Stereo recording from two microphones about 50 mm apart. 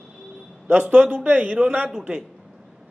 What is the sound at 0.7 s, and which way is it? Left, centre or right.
Speech, right.